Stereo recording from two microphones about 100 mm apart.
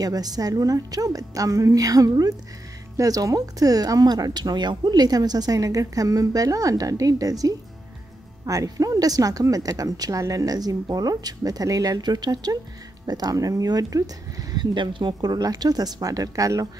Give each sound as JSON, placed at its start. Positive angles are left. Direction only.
{"t": 0.0, "sound": "speech", "side_deg": -40}